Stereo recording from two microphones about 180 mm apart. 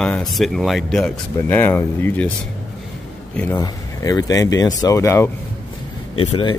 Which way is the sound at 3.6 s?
20° left (ahead or behind).